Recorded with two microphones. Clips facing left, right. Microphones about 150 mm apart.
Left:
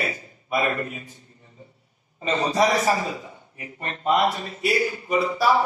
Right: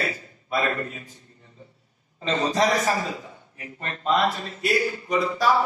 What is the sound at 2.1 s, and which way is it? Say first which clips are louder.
A man's voice: left 1 dB; 15° left (ahead or behind).